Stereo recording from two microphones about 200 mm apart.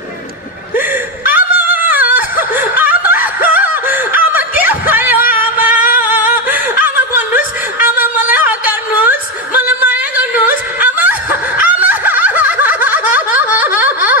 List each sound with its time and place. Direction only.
0.7 s snicker: 10° right (ahead or behind)
5.3 s music: 10° right (ahead or behind)
5.9 s singing: 45° left (ahead or behind)
7.3 s a sound: 10° right (ahead or behind)
10.4 s snicker: 10° right (ahead or behind)